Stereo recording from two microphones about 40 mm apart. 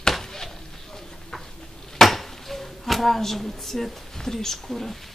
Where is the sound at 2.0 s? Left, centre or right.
Centre.